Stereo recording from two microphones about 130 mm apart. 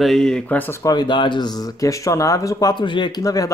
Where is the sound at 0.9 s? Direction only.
35° left (ahead or behind).